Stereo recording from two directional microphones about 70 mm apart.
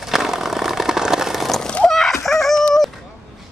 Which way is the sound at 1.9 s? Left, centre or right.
Centre.